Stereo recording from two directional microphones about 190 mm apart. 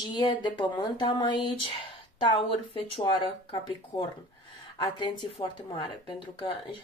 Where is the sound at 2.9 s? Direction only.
25° left (ahead or behind).